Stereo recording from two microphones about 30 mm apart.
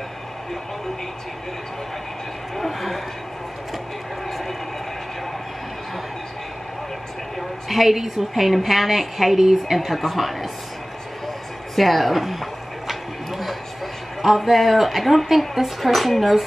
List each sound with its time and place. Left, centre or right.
2.5 s speech: centre
7.3 s a woman's voice: centre
11.7 s a woman's voice: centre
12.8 s a sound: centre
14.2 s a woman's voice: centre